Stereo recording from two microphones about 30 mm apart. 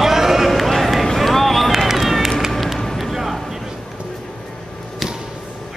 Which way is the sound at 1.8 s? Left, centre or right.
Centre.